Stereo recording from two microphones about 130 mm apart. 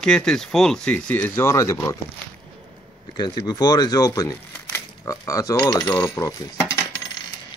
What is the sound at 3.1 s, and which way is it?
Speech, 35° left (ahead or behind).